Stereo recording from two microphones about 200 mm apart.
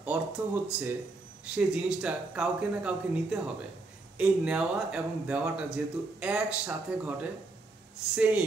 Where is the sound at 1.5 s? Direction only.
5° right (ahead or behind).